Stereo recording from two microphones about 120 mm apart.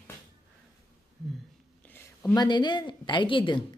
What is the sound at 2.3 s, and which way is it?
Speech, 40° left (ahead or behind).